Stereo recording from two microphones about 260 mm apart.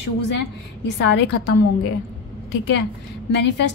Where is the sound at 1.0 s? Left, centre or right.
Left.